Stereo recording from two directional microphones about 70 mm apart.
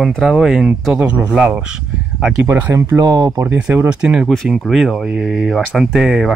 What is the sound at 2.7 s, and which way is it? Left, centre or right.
Speech, right.